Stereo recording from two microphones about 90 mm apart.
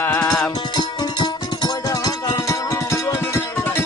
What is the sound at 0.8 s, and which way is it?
Music, 55° left (ahead or behind).